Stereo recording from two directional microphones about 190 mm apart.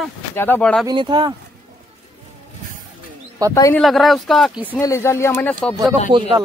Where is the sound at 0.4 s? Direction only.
10° left (ahead or behind).